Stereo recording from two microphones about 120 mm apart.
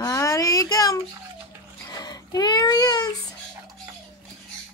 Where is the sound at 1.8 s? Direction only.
35° left (ahead or behind).